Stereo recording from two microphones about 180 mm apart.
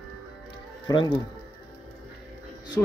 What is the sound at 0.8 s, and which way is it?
Speech, 25° left (ahead or behind).